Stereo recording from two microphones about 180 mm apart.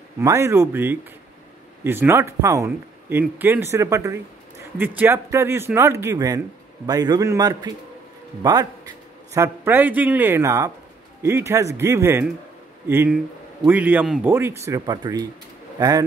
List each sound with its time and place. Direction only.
0.2 s a man's voice: 15° right (ahead or behind)